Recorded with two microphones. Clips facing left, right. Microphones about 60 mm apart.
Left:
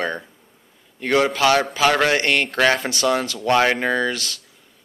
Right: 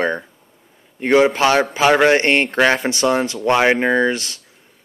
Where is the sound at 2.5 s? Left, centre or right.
Centre.